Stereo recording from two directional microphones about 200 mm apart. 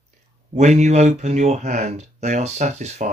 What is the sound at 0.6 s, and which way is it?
Speech, 35° right (ahead or behind).